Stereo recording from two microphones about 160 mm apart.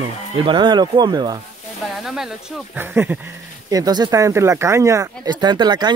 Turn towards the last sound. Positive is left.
turn(degrees=-25)  # may be behind; listen again after turning